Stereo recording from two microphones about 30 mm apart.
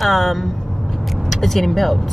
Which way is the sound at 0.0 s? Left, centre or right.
Centre.